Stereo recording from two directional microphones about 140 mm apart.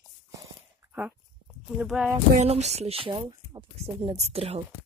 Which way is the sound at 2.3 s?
50° right (ahead or behind).